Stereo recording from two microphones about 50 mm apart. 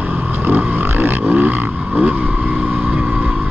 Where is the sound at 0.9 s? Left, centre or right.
Right.